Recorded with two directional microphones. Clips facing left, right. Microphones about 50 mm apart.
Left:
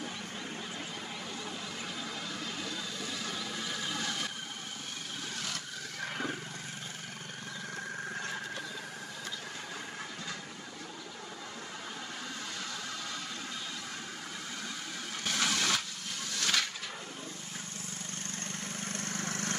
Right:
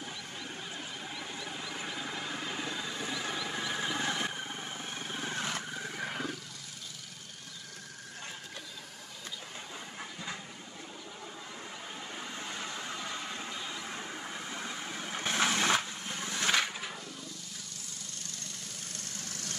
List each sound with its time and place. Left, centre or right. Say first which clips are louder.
2.0 s a sound: right 2 dB; right
5.2 s vehicle: right 5 dB; right
15.1 s vehicle: right 3 dB; right
18.9 s vehicle: left 8 dB; left